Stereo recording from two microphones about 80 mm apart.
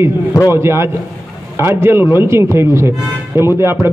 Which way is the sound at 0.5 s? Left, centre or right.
Right.